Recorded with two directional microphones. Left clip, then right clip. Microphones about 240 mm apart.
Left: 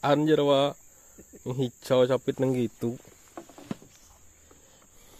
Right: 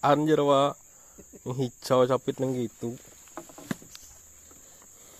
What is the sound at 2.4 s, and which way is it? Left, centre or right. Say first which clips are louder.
Speech: left 3 dB; centre.